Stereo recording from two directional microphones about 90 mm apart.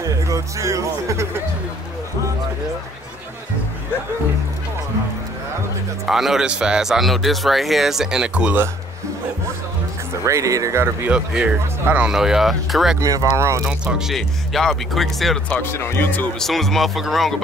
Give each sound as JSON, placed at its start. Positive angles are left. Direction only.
{"t": 0.0, "sound": "speech", "side_deg": -35}
{"t": 6.0, "sound": "speech", "side_deg": -5}
{"t": 10.2, "sound": "speech", "side_deg": -35}
{"t": 11.1, "sound": "speech", "side_deg": -10}
{"t": 12.1, "sound": "speech", "side_deg": -5}
{"t": 13.0, "sound": "speech", "side_deg": -40}
{"t": 13.7, "sound": "speech", "side_deg": -5}
{"t": 15.5, "sound": "speech", "side_deg": 25}
{"t": 16.3, "sound": "speech", "side_deg": 5}